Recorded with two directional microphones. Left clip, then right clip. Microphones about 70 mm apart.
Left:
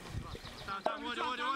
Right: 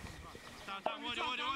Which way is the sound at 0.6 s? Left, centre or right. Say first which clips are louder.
Left 3 dB; right.